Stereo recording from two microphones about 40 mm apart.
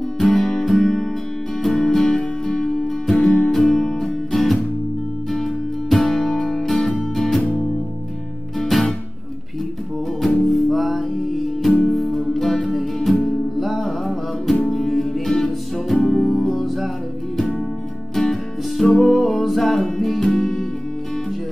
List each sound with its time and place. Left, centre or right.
0.2 s music: centre
2.0 s music: centre
3.1 s music: centre
8.5 s music: centre
10.2 s music: centre
18.1 s music: centre